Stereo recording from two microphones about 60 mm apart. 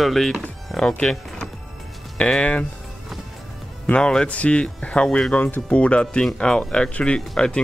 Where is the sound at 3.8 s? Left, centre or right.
Centre.